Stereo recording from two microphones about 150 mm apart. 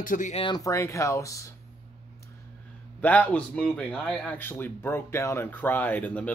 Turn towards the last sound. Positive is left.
turn(degrees=10)  # may be behind; listen again after turning